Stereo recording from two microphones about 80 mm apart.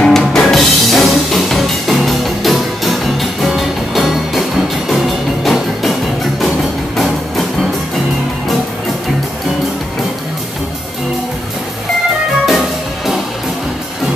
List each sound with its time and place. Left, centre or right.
0.0 s music: centre
12.4 s music: centre